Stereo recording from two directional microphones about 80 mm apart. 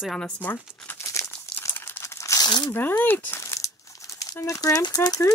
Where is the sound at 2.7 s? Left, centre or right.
Left.